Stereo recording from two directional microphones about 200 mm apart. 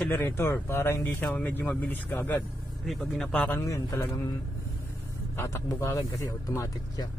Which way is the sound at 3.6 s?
15° left (ahead or behind).